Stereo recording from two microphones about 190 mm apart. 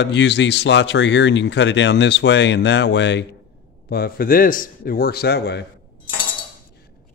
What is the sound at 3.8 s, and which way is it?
A man's voice, 55° left (ahead or behind).